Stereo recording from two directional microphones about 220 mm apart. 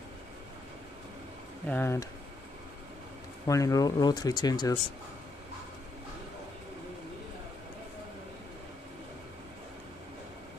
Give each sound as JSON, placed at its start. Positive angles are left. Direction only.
{"t": 1.7, "sound": "speech", "side_deg": 10}
{"t": 3.4, "sound": "speech", "side_deg": 15}